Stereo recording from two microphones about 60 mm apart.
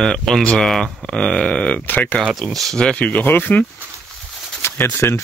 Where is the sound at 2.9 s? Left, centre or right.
Left.